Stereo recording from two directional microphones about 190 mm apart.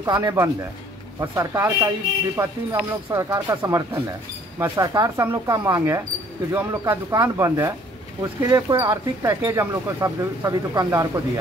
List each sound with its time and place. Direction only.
0.0 s speech: 20° right (ahead or behind)